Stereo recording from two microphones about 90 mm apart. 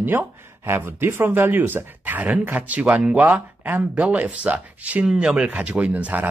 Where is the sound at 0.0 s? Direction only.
25° right (ahead or behind).